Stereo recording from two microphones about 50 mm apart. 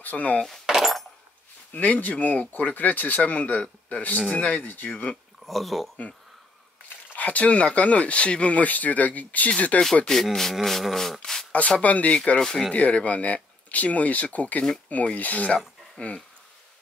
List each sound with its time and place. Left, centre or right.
0.0 s speech: left
0.7 s a sound: centre
1.7 s speech: left
5.4 s speech: centre
7.2 s speech: left
10.1 s speech: centre
10.5 s rub: centre
11.5 s speech: left
12.4 s speech: centre
12.7 s speech: left